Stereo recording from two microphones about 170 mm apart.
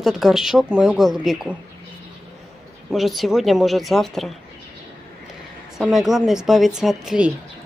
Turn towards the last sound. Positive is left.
turn(degrees=-5)  # may be behind; listen again after turning